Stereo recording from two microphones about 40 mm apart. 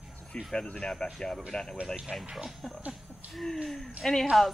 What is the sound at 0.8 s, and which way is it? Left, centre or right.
Speech, left.